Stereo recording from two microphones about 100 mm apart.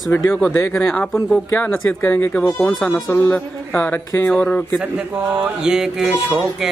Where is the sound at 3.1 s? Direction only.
20° left (ahead or behind).